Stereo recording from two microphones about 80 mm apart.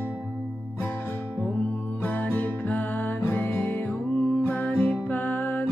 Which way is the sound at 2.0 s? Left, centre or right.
Centre.